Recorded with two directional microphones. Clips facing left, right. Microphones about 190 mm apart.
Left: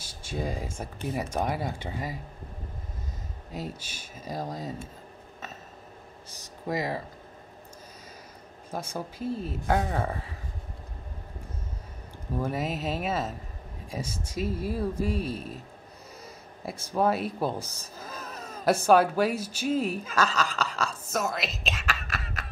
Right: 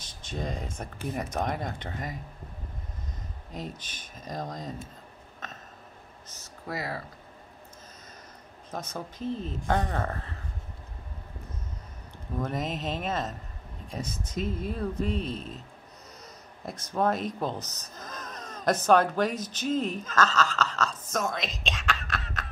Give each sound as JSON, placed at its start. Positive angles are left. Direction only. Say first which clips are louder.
{"t": 0.0, "sound": "speech", "louder": "left 2 dB", "side_deg": 10}
{"t": 3.5, "sound": "speech", "louder": "left 2 dB", "side_deg": 5}
{"t": 5.4, "sound": "a sound", "louder": "left 1 dB", "side_deg": 10}
{"t": 8.6, "sound": "speech", "louder": "left 2 dB", "side_deg": 10}
{"t": 12.4, "sound": "speech", "louder": "left 1 dB", "side_deg": 10}
{"t": 16.6, "sound": "speech", "louder": "left 1 dB", "side_deg": 10}